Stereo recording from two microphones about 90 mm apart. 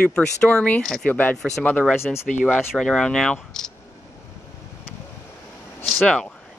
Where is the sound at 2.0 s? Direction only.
30° left (ahead or behind).